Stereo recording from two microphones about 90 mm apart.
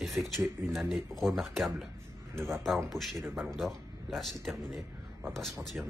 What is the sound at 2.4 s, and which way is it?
Speech, 30° right (ahead or behind).